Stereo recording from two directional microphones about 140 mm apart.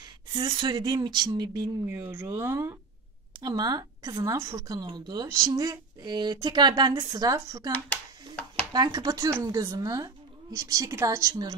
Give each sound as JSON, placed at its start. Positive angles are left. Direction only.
{"t": 0.0, "sound": "speech", "side_deg": -30}
{"t": 1.9, "sound": "speech", "side_deg": -15}
{"t": 7.7, "sound": "a sound", "side_deg": 10}
{"t": 8.7, "sound": "speech", "side_deg": -30}